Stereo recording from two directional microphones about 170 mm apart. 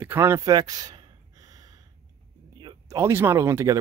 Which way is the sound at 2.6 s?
15° right (ahead or behind).